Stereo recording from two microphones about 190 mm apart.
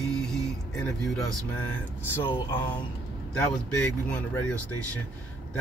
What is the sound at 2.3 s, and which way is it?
Speech, 25° left (ahead or behind).